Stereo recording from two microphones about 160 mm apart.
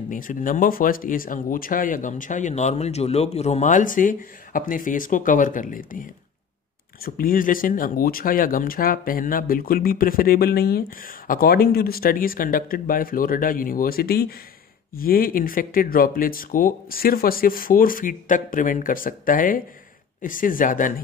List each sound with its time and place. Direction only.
0.1 s speech: 55° left (ahead or behind)
7.2 s speech: 60° left (ahead or behind)